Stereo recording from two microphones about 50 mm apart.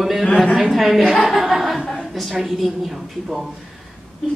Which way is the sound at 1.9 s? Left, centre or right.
Centre.